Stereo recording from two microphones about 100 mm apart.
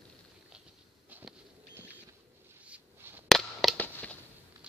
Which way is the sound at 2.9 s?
25° right (ahead or behind).